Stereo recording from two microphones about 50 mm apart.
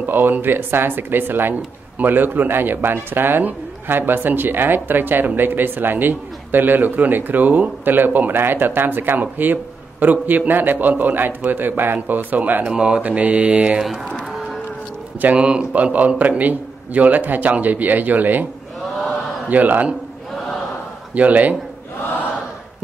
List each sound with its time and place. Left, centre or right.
0.0 s speech: right
12.6 s speech: centre
13.0 s speech: right
14.3 s livestock: centre
15.3 s speech: right
19.5 s speech: right
21.1 s speech: right